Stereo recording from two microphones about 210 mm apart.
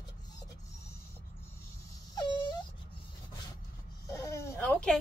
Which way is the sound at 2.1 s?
20° left (ahead or behind).